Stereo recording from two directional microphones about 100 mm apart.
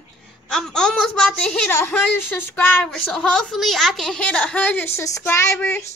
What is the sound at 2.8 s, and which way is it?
A child's voice, 5° left (ahead or behind).